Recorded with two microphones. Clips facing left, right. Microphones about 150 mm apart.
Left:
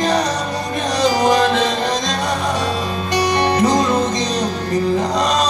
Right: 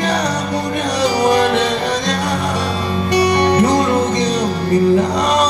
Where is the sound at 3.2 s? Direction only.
65° right (ahead or behind).